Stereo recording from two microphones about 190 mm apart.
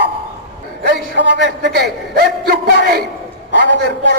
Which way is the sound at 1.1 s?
70° right (ahead or behind).